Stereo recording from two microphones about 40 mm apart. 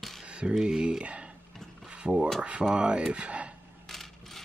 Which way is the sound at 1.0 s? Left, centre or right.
Right.